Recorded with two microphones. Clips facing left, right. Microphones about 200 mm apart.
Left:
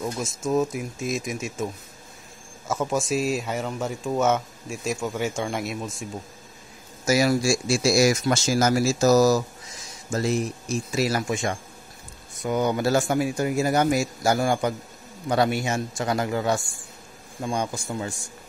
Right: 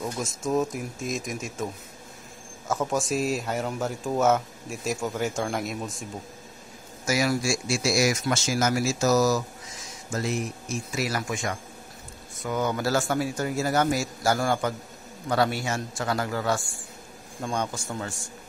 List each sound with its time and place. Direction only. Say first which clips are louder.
0.2 s speech: left 2 dB; centre (ahead or behind)
2.7 s speech: left 2 dB; centre (ahead or behind)
7.1 s a man's voice: left 4 dB; 30° left (ahead or behind); by 18.1 s 10° left (ahead or behind)